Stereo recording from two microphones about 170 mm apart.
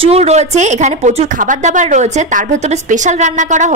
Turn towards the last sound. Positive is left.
turn(degrees=-45)  # may be behind; listen again after turning